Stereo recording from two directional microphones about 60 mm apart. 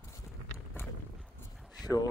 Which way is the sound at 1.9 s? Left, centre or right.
Left.